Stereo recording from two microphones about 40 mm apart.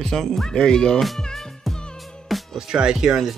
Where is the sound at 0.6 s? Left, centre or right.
Centre.